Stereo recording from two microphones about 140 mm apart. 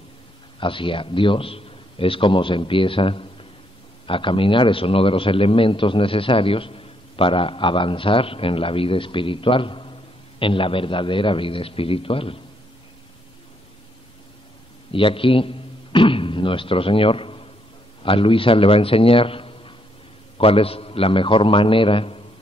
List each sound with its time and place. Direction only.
0.6 s a man's voice: 35° left (ahead or behind)
14.9 s a sound: 40° left (ahead or behind)
18.0 s a man's voice: 40° left (ahead or behind)